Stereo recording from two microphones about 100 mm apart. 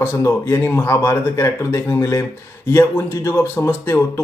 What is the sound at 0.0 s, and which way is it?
Speech, 25° left (ahead or behind).